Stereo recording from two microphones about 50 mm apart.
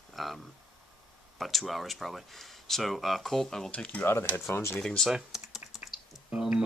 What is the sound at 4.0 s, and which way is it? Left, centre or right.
Speech, left.